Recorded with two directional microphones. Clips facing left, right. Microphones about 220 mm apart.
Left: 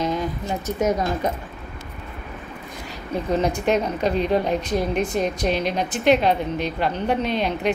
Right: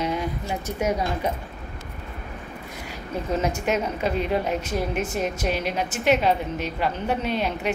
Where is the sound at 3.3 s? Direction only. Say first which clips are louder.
Left 4 dB; 35° left (ahead or behind).